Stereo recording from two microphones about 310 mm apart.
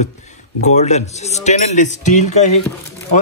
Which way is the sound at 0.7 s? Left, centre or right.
Left.